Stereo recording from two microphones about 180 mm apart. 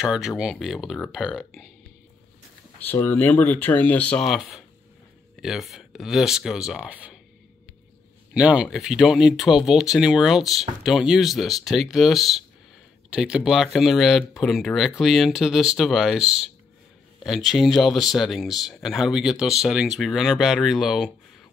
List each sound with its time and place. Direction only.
0.0 s speech: 5° right (ahead or behind)
2.8 s speech: 10° left (ahead or behind); by 7.2 s 5° right (ahead or behind)
8.3 s speech: 5° right (ahead or behind)